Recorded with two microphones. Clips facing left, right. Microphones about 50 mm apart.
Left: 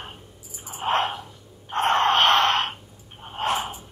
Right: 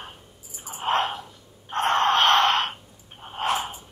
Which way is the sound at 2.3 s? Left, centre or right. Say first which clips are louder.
Even; centre.